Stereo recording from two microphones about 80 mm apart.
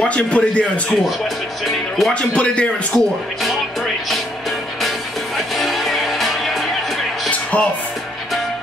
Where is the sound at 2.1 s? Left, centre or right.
Centre.